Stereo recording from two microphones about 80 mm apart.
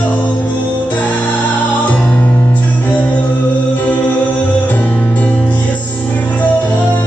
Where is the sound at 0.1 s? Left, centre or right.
Left.